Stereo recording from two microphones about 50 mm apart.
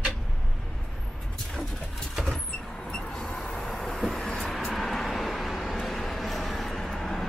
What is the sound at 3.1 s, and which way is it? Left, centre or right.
Vehicle, centre.